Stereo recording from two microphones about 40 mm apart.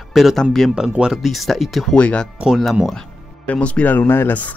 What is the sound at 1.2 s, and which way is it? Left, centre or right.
Speech, centre.